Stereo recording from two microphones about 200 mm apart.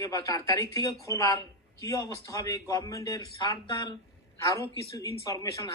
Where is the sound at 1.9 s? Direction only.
15° left (ahead or behind).